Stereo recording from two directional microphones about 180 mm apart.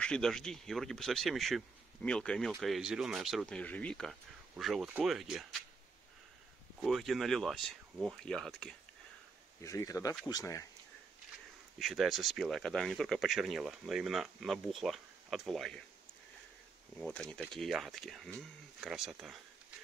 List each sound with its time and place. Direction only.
0.0 s speech: 5° left (ahead or behind)
6.8 s speech: centre (ahead or behind)
9.6 s speech: 15° left (ahead or behind)
11.8 s speech: centre (ahead or behind)
17.0 s speech: 5° left (ahead or behind)